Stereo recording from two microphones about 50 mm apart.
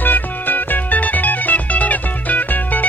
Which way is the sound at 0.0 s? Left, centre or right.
Left.